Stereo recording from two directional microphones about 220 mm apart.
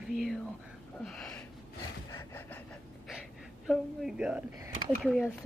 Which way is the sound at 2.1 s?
10° left (ahead or behind).